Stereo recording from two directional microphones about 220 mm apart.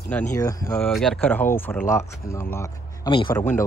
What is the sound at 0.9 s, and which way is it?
Speech, centre (ahead or behind).